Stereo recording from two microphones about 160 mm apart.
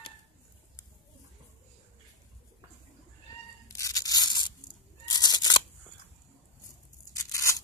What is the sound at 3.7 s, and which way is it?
Tearing, 20° left (ahead or behind).